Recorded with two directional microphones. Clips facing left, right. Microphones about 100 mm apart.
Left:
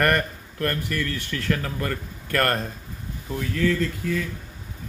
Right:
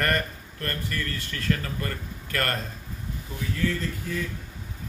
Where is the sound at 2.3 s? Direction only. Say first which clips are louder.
Left 6 dB; 55° left (ahead or behind).